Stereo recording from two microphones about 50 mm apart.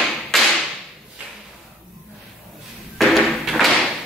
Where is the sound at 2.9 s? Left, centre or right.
Centre.